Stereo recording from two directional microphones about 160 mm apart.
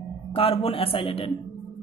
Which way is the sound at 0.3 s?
35° left (ahead or behind).